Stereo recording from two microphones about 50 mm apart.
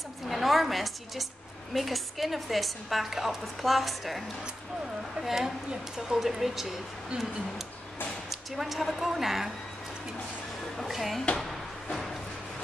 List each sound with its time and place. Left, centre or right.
0.3 s a woman's voice: centre
5.2 s a woman's voice: centre
8.3 s speech: centre
10.9 s a woman's voice: centre
11.3 s drawer open or close: centre